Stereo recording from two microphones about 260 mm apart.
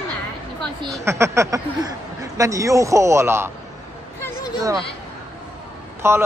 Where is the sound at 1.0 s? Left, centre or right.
Centre.